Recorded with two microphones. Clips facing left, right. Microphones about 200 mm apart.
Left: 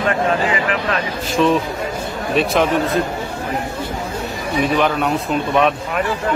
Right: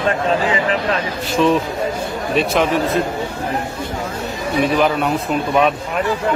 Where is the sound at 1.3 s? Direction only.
Centre (ahead or behind).